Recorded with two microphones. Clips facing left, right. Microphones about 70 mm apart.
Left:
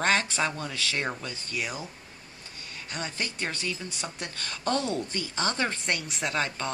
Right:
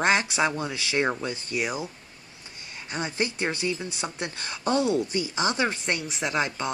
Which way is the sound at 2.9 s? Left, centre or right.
Right.